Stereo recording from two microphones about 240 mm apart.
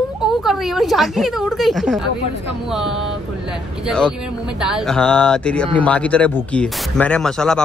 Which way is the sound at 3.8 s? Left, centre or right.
Centre.